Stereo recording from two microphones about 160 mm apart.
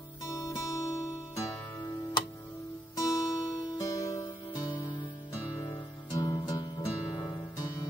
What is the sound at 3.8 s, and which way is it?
Music, 20° left (ahead or behind).